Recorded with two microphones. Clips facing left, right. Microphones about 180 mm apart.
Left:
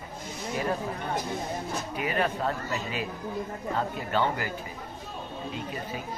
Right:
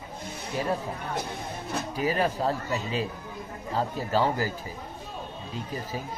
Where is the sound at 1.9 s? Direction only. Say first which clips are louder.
Right 2 dB; 35° right (ahead or behind).